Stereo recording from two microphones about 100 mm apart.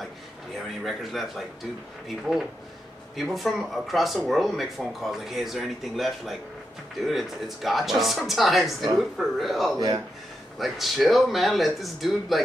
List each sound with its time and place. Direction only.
0.8 s speech: centre (ahead or behind)
3.2 s speech: centre (ahead or behind)
9.8 s speech: 40° right (ahead or behind)
10.6 s speech: centre (ahead or behind)